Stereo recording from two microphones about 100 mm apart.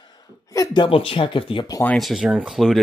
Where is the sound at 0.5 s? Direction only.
35° left (ahead or behind).